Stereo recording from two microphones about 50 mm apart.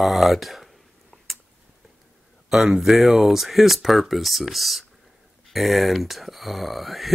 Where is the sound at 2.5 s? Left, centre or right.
Centre.